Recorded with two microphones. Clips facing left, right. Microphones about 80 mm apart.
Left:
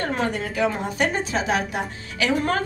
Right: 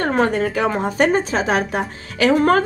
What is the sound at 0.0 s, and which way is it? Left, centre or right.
A woman's voice, right.